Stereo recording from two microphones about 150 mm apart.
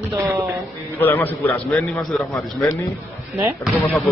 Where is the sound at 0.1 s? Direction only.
20° right (ahead or behind).